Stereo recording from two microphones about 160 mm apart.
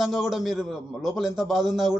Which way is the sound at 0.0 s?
Centre (ahead or behind).